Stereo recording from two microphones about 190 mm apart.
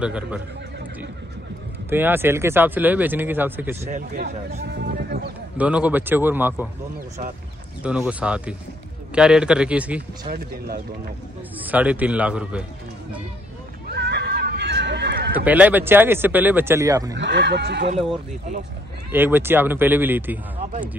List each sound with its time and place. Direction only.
0.0 s a man's voice: 5° right (ahead or behind)
1.9 s speech: 10° right (ahead or behind)
3.9 s speech: 55° right (ahead or behind)
5.6 s speech: 5° right (ahead or behind)
7.8 s a man's voice: 5° right (ahead or behind)
11.6 s speech: 10° right (ahead or behind)
13.8 s neigh: 60° right (ahead or behind)
15.4 s speech: 10° right (ahead or behind)
17.1 s speech: 65° right (ahead or behind)
19.1 s speech: 10° right (ahead or behind)